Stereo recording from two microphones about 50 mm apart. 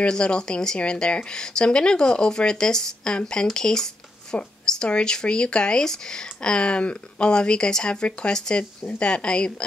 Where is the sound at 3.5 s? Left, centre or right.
Centre.